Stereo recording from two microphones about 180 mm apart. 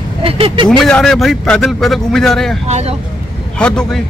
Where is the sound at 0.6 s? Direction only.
5° left (ahead or behind).